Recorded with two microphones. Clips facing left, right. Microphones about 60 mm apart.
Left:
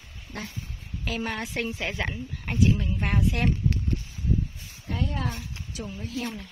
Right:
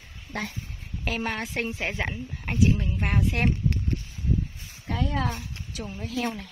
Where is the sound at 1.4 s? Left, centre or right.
Right.